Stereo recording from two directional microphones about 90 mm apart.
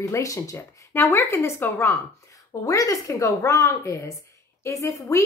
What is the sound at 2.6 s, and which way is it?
A woman's voice, 40° left (ahead or behind).